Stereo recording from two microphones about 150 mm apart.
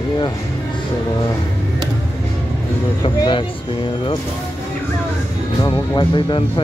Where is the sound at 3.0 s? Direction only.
30° left (ahead or behind).